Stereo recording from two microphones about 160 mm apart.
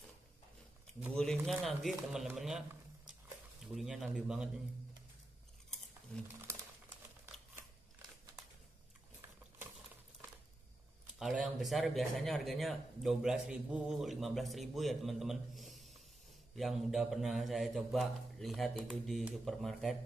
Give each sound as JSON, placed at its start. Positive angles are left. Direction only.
{"t": 1.1, "sound": "speech", "side_deg": 5}
{"t": 11.1, "sound": "speech", "side_deg": 0}